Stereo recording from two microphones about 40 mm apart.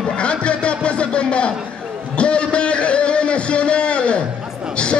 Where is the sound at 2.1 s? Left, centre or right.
Left.